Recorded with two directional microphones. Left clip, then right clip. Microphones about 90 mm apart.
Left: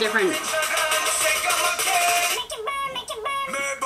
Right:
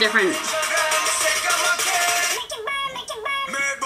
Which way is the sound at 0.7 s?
35° right (ahead or behind).